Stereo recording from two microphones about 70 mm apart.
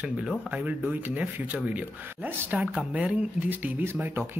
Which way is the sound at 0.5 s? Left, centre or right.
Centre.